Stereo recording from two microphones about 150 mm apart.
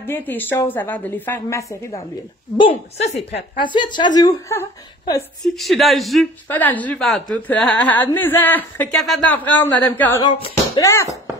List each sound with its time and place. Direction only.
0.0 s a woman's voice: 15° left (ahead or behind)
2.5 s a woman's voice: 35° left (ahead or behind)
5.4 s speech: centre (ahead or behind)
6.5 s a woman's voice: 10° left (ahead or behind)
8.9 s a woman's voice: centre (ahead or behind); by 11.1 s 20° left (ahead or behind)